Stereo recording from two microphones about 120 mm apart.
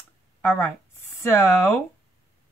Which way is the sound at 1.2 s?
20° left (ahead or behind).